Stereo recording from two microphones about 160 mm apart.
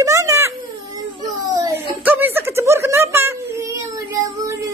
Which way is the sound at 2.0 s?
10° right (ahead or behind).